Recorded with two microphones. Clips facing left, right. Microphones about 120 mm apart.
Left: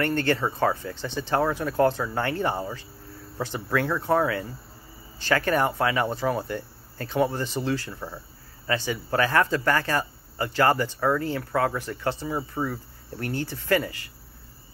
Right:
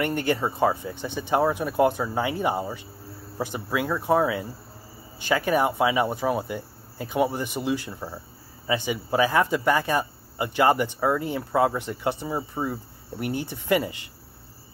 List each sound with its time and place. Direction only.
0.0 s speech: 15° right (ahead or behind)